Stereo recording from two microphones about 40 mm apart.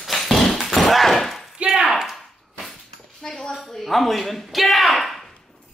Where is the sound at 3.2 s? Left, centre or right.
Centre.